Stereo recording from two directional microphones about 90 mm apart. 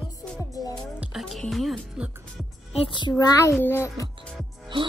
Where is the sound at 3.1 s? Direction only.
35° left (ahead or behind).